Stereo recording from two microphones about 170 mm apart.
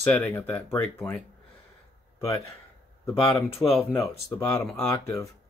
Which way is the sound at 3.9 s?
10° left (ahead or behind).